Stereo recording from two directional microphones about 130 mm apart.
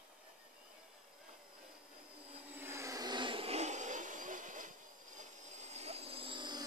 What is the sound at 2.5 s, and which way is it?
Vehicle, 20° right (ahead or behind).